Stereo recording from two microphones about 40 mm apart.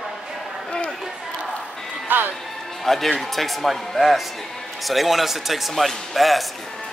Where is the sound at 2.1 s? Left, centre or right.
Right.